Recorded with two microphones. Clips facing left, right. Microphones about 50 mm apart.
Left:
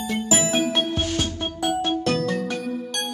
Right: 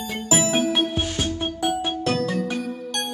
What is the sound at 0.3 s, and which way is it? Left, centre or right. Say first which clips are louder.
Music: right 2 dB; centre.